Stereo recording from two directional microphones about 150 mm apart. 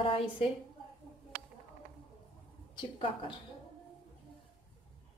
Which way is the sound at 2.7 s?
35° left (ahead or behind).